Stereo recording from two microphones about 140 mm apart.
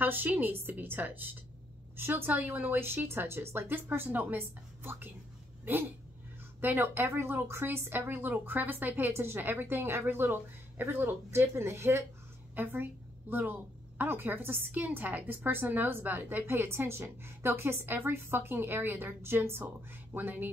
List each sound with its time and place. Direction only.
0.0 s a woman's voice: 15° right (ahead or behind)